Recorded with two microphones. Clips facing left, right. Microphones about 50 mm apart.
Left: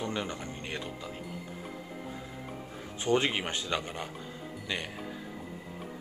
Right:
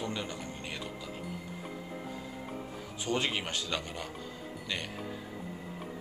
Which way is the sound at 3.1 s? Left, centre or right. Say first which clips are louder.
Left 4 dB; left.